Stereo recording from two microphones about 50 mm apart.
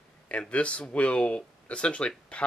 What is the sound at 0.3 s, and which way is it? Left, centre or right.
Speech, left.